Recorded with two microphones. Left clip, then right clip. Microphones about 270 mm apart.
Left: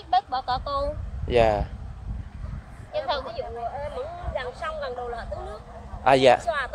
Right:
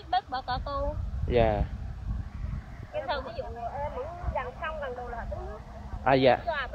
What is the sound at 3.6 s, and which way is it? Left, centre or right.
Speech, left.